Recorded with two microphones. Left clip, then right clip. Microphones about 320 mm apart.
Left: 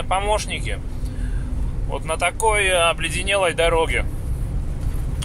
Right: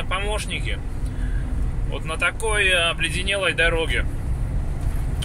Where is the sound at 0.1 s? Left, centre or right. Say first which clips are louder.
Left 6 dB; left.